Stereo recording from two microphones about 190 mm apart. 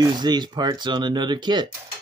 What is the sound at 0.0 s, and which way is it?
Speech, 20° right (ahead or behind).